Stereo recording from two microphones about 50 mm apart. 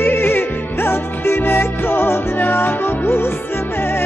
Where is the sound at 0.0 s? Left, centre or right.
Left.